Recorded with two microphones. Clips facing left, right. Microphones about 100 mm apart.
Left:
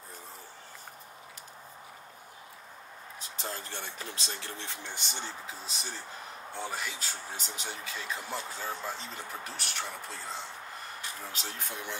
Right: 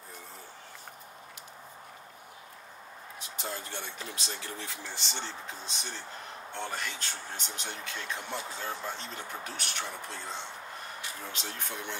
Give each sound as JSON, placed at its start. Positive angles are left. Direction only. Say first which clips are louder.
{"t": 3.2, "sound": "speech", "louder": "right 1 dB", "side_deg": 35}
{"t": 5.1, "sound": "speech", "louder": "right 1 dB", "side_deg": 5}